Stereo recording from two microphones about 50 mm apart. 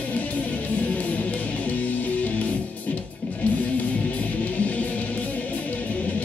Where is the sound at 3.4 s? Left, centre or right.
Left.